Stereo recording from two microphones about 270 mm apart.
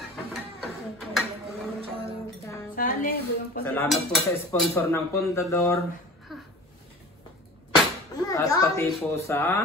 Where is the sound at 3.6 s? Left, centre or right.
Centre.